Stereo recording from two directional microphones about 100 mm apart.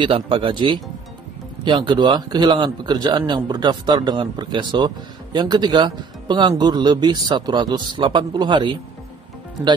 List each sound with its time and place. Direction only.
0.0 s a man's voice: 60° right (ahead or behind)